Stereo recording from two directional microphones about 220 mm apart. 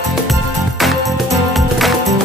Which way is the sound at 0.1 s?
Centre (ahead or behind).